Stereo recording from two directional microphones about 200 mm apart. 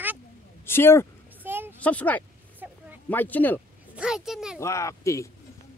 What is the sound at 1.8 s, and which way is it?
Speech, 5° left (ahead or behind).